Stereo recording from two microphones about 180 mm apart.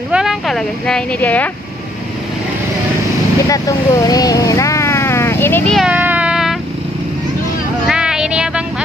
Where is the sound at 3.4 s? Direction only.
20° left (ahead or behind).